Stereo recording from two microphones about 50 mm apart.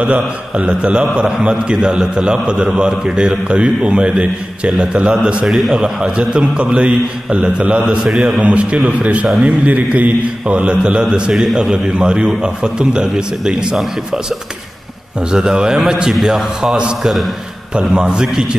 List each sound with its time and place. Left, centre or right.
0.0 s a man's voice: right
4.6 s a man's voice: centre
6.1 s a man's voice: right
8.1 s a man's voice: centre
8.4 s a man's voice: right
15.3 s a man's voice: centre